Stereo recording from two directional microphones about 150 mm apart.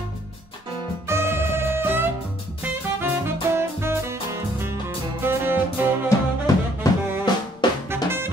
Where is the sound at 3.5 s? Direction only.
15° right (ahead or behind).